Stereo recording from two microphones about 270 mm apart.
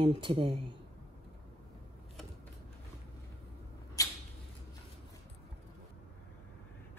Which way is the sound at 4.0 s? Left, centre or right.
Centre.